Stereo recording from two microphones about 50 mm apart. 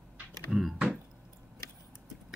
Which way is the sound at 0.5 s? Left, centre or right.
Centre.